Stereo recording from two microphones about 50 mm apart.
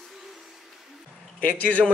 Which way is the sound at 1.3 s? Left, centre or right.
Left.